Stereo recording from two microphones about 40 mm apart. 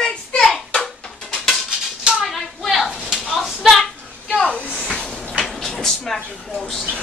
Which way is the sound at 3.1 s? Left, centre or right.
Centre.